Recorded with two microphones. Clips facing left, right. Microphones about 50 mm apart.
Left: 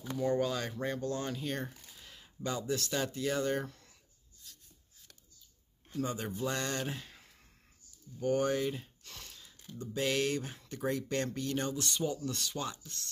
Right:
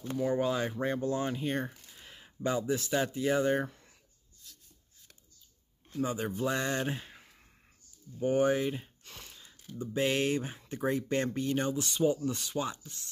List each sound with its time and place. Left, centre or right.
0.2 s speech: centre
5.9 s a man's voice: centre